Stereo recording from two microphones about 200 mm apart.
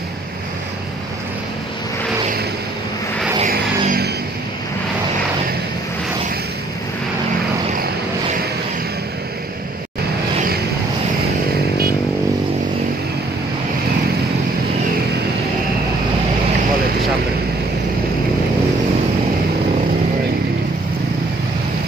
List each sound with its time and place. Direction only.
3.4 s music: 45° right (ahead or behind)